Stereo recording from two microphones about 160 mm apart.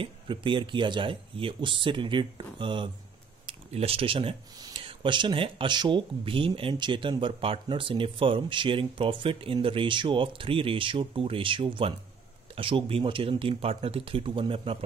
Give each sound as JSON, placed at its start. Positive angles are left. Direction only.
{"t": 0.0, "sound": "speech", "side_deg": -30}